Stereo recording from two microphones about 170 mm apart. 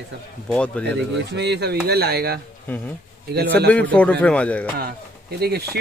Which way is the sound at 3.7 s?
10° left (ahead or behind).